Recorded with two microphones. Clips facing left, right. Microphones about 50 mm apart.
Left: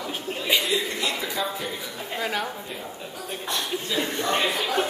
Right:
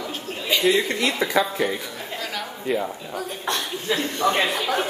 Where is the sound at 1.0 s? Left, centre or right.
Right.